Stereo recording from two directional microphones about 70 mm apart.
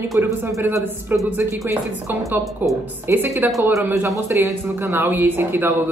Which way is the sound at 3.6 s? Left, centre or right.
Right.